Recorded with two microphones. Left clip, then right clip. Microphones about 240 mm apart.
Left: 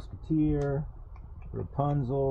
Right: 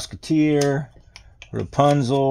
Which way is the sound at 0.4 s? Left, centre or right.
Right.